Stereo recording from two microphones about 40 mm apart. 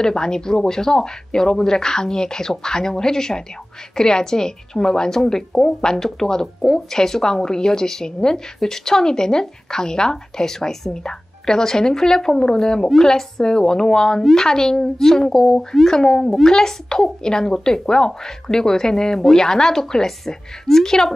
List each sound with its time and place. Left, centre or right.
0.0 s a woman's voice: centre